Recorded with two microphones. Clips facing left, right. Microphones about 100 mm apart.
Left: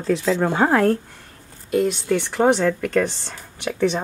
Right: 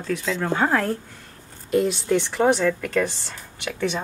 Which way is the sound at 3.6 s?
Centre (ahead or behind).